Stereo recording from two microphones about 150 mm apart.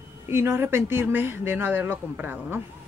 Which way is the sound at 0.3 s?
15° right (ahead or behind).